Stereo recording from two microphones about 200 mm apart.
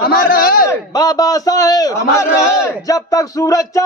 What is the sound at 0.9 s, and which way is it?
A man's voice, 20° left (ahead or behind).